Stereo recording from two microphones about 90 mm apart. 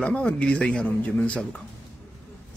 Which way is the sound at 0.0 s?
15° left (ahead or behind).